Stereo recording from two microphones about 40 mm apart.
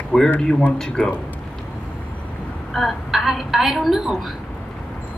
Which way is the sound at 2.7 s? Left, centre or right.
Centre.